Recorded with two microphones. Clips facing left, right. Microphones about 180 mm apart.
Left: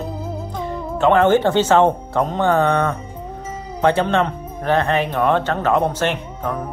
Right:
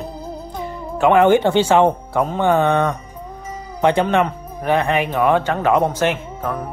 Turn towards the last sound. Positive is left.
turn(degrees=-5)  # may be behind; listen again after turning